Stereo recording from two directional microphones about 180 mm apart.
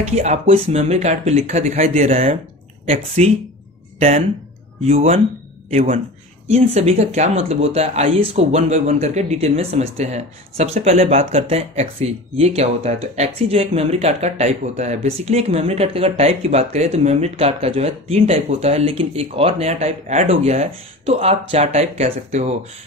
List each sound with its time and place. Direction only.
0.0 s speech: 40° right (ahead or behind)
4.8 s speech: 40° right (ahead or behind)